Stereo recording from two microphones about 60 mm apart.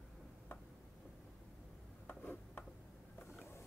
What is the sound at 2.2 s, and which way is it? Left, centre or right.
Tick-tock, left.